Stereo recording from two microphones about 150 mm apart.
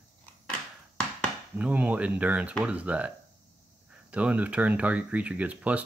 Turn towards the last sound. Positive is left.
turn(degrees=-10)  # may be behind; listen again after turning